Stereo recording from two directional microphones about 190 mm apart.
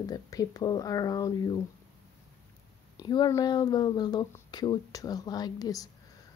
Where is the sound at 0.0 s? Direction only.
20° left (ahead or behind).